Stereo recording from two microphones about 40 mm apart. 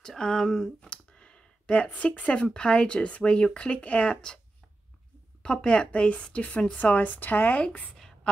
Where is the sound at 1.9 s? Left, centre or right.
Left.